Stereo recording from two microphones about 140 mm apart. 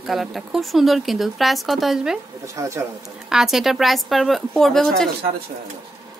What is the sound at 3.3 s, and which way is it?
A woman's voice, 5° right (ahead or behind).